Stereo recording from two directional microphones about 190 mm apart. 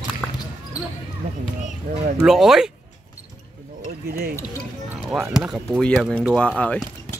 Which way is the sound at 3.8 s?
50° right (ahead or behind).